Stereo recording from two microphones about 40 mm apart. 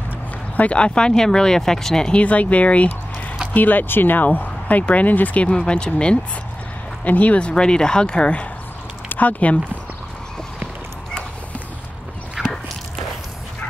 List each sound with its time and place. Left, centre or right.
0.6 s speech: left; by 2.0 s centre
2.2 s speech: left
3.5 s speech: left
5.4 s speech: left
7.1 s speech: left
7.3 s speech: left
9.1 s speech: left
12.4 s walk: centre